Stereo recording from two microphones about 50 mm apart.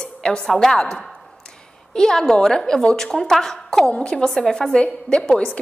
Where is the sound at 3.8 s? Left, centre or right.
Left.